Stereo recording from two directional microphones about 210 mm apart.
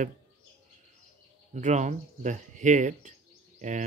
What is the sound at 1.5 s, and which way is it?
Speech, 35° right (ahead or behind).